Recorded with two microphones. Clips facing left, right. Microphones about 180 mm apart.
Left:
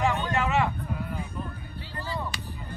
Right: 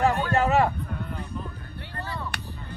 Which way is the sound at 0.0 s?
35° right (ahead or behind).